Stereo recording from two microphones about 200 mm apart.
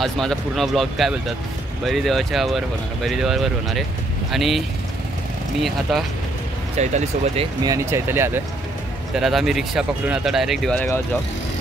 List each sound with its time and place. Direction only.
0.0 s speech: centre (ahead or behind)
6.8 s speech: 35° right (ahead or behind)
7.6 s speech: 15° right (ahead or behind)
9.1 s speech: centre (ahead or behind)